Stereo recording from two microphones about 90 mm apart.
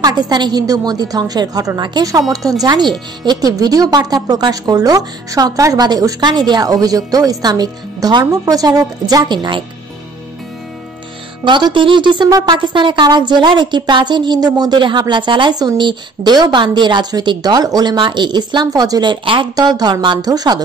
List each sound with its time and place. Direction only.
0.0 s speech: 50° right (ahead or behind)
2.6 s speech: 55° right (ahead or behind)
11.4 s speech: 65° right (ahead or behind)
12.3 s speech: 40° right (ahead or behind)
12.5 s speech: 65° right (ahead or behind); by 20.6 s 45° right (ahead or behind)